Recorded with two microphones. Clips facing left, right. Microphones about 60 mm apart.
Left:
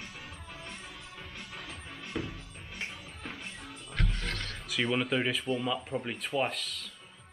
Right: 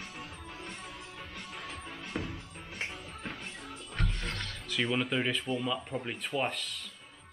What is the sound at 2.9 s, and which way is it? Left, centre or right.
Music, right.